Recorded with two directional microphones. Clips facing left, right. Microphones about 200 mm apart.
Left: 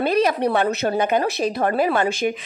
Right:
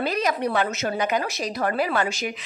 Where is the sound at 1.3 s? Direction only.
55° left (ahead or behind).